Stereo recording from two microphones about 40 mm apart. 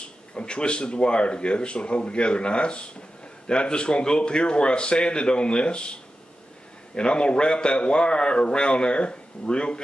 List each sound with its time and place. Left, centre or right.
0.3 s a man's voice: left
7.0 s a man's voice: left